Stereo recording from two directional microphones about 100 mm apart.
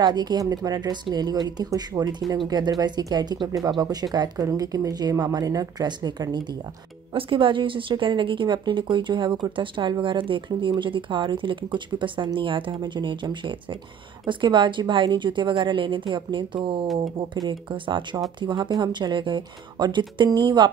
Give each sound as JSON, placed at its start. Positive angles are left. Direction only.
{"t": 0.0, "sound": "a woman's voice", "side_deg": -45}
{"t": 7.2, "sound": "a woman's voice", "side_deg": -60}